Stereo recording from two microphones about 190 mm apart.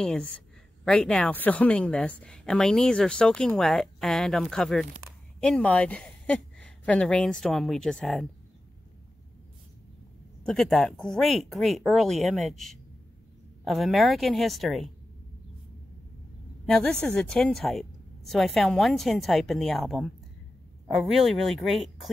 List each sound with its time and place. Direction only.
0.0 s a woman's voice: 5° left (ahead or behind)
10.4 s a woman's voice: centre (ahead or behind)
16.6 s a woman's voice: 5° left (ahead or behind)